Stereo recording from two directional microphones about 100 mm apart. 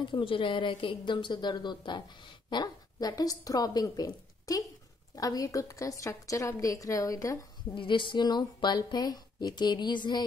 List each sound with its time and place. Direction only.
0.0 s a woman's voice: 60° left (ahead or behind); by 7.3 s 35° left (ahead or behind)
7.7 s speech: 55° left (ahead or behind)